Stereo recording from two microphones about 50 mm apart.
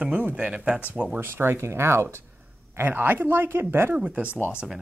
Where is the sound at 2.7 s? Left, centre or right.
Right.